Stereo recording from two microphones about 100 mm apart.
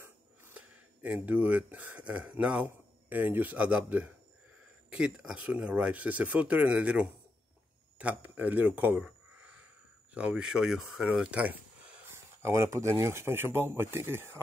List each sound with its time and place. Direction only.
0.0 s speech: 15° right (ahead or behind)
12.1 s speech: 25° right (ahead or behind)